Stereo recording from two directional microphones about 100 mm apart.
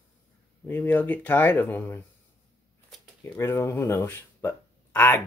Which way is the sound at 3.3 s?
25° left (ahead or behind).